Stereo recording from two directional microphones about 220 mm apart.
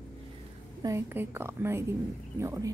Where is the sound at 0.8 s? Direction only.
10° right (ahead or behind).